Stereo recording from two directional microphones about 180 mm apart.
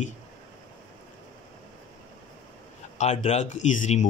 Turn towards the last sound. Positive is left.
turn(degrees=40)  # may be behind; listen again after turning